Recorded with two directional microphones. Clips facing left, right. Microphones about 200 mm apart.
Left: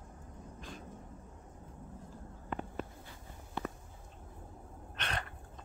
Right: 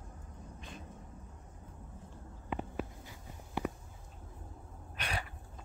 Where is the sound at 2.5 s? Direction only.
5° right (ahead or behind).